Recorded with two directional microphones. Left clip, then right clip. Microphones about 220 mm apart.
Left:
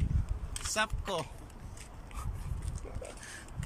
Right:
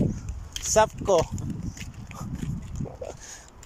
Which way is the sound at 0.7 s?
35° right (ahead or behind).